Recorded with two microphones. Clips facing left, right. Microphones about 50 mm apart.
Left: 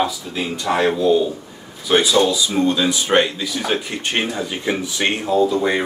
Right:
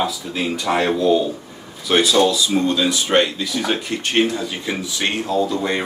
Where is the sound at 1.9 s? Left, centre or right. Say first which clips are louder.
Even; centre; by 5.3 s left.